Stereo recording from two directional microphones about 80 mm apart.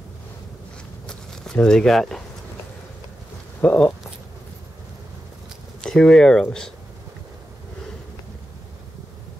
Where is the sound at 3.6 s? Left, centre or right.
Centre.